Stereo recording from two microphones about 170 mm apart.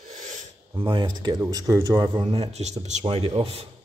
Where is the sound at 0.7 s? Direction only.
30° right (ahead or behind).